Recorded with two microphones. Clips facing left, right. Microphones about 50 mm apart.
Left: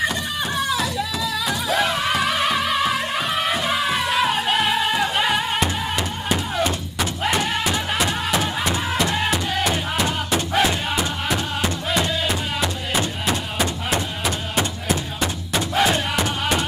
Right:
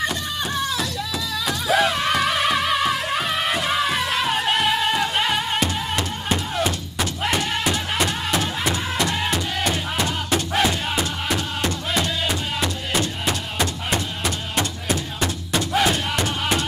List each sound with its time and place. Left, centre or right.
0.7 s music: centre
6.6 s a sound: centre
8.1 s music: centre
10.3 s music: centre
13.3 s a sound: centre
14.9 s music: centre